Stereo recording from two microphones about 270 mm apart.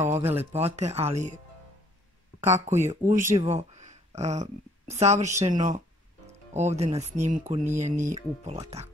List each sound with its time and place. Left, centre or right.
0.0 s speech: centre
0.4 s speech: right
2.3 s a sound: left
2.7 s speech: right